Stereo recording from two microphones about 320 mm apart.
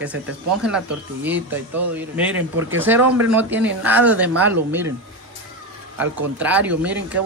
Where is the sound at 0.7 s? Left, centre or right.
Centre.